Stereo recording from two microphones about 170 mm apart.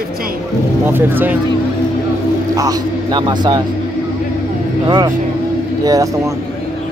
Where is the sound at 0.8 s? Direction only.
10° right (ahead or behind).